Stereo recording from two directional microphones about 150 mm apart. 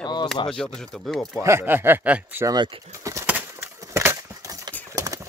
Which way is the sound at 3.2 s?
10° right (ahead or behind).